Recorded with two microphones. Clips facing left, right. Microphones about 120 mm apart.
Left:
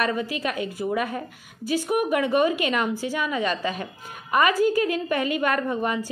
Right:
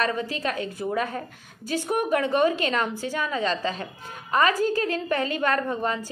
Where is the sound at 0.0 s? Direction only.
10° left (ahead or behind).